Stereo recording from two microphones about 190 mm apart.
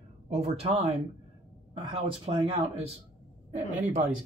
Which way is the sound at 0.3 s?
35° right (ahead or behind).